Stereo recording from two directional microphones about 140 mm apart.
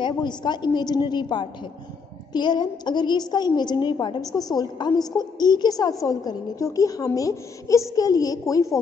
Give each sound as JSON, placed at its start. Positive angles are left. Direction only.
{"t": 0.0, "sound": "a woman's voice", "side_deg": 30}